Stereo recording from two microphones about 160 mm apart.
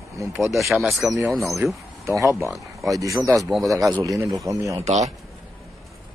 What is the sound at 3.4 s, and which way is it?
Speech, centre (ahead or behind).